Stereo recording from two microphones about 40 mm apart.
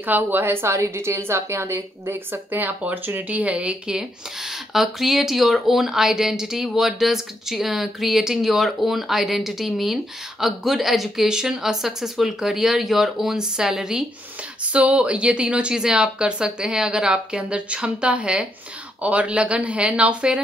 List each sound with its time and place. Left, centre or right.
0.0 s a woman's voice: right
2.5 s speech: right
3.3 s speech: right
4.7 s speech: centre
14.7 s a woman's voice: right